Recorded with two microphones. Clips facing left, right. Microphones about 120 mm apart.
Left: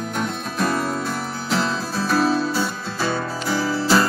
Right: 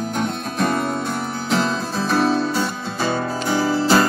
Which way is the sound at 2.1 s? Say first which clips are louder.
Right 1 dB; 45° right (ahead or behind).